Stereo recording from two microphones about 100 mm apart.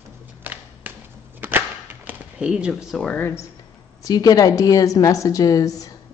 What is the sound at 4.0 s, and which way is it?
A woman's voice, 40° left (ahead or behind).